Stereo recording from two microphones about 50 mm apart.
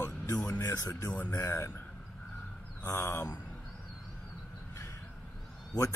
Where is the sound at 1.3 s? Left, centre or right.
Left.